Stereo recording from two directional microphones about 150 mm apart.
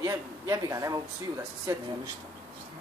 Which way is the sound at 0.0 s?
20° right (ahead or behind).